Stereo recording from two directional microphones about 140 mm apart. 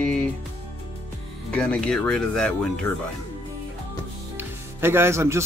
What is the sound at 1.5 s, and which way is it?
Speech, 10° left (ahead or behind).